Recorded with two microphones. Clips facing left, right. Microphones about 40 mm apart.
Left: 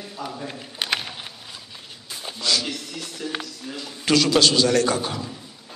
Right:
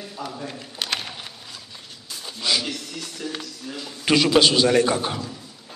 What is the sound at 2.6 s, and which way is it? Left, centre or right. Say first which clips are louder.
A man's voice: even; centre.